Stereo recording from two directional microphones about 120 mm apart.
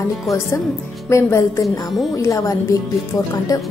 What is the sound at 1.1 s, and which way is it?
A woman's voice, 25° left (ahead or behind).